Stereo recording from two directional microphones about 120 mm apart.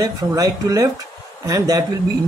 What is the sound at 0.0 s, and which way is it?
Speech, 30° right (ahead or behind).